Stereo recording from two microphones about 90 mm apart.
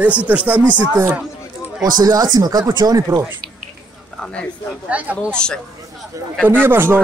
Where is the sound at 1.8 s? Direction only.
50° right (ahead or behind).